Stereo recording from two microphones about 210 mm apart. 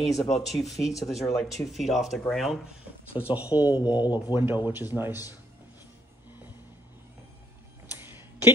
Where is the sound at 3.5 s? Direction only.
20° left (ahead or behind).